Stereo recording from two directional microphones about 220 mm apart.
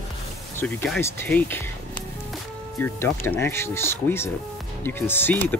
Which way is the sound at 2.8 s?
10° left (ahead or behind).